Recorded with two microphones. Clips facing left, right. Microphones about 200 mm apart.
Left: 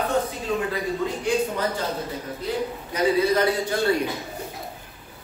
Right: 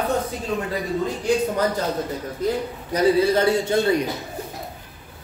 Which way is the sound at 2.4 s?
45° right (ahead or behind).